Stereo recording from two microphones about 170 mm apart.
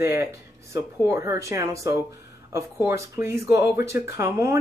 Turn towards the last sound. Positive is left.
turn(degrees=-15)  # may be behind; listen again after turning